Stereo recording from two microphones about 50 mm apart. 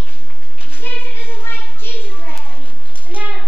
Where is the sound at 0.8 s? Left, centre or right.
Left.